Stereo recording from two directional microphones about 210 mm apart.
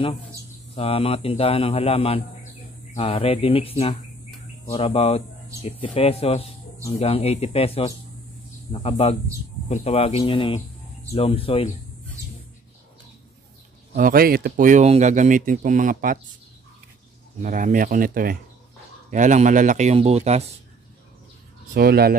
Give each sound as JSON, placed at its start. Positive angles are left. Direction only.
{"t": 0.7, "sound": "speech", "side_deg": 25}
{"t": 13.9, "sound": "speech", "side_deg": -45}
{"t": 17.4, "sound": "speech", "side_deg": -40}
{"t": 21.7, "sound": "speech", "side_deg": -50}